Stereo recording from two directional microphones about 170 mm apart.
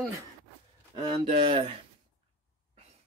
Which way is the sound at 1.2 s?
35° right (ahead or behind).